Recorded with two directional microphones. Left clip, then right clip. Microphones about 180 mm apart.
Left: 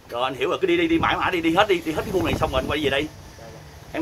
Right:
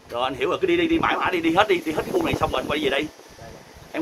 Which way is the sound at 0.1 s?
15° right (ahead or behind).